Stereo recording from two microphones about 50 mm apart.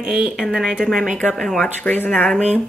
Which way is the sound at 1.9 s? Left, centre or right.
Left.